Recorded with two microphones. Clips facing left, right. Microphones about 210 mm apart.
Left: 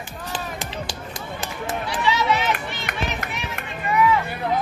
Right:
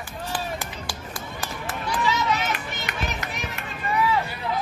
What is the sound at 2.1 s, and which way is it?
Run, 45° right (ahead or behind).